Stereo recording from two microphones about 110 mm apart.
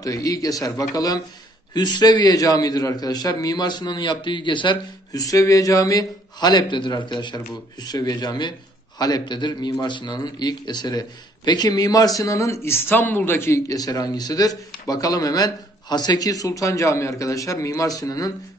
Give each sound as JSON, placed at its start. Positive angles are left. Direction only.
{"t": 0.0, "sound": "a man's voice", "side_deg": 35}